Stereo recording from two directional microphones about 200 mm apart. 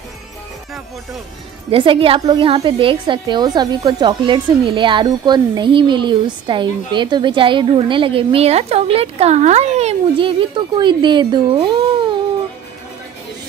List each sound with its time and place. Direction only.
1.7 s a woman's voice: 25° right (ahead or behind)